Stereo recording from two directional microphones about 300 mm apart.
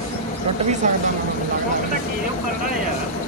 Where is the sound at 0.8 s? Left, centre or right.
Right.